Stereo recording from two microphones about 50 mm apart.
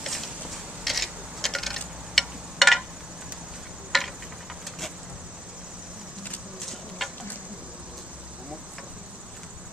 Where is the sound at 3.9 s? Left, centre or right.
Centre.